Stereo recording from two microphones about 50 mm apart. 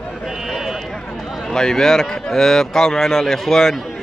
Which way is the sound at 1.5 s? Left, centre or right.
Centre.